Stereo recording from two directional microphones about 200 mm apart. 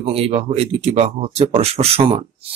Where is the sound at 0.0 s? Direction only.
30° right (ahead or behind).